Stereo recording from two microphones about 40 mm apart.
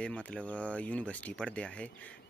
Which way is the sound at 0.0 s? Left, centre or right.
Left.